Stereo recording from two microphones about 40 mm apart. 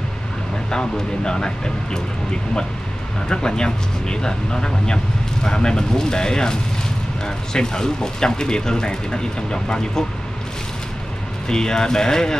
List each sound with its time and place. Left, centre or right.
0.7 s speech: centre
3.3 s speech: centre
11.4 s speech: centre